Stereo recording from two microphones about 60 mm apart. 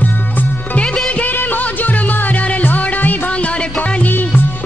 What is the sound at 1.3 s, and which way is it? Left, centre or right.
Music, left.